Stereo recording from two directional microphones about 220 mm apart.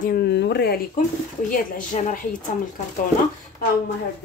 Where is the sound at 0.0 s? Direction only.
45° left (ahead or behind).